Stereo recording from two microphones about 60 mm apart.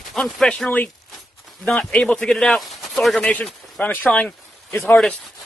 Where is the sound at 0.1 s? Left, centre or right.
Centre.